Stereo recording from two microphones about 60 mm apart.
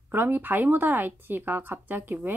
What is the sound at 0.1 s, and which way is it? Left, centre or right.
Speech, right.